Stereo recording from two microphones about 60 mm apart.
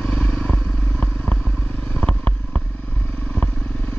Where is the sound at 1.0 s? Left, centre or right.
Centre.